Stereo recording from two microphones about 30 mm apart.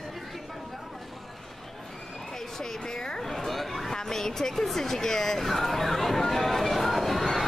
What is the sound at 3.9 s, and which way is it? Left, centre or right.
Speech, centre.